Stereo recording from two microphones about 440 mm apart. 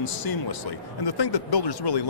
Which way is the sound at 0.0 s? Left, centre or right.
Left.